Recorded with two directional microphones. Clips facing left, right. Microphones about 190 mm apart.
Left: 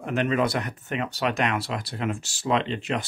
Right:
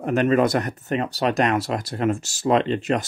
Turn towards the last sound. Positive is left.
turn(degrees=-45)  # may be behind; listen again after turning